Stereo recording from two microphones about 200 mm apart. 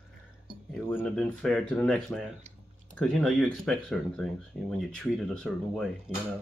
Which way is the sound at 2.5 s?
35° right (ahead or behind).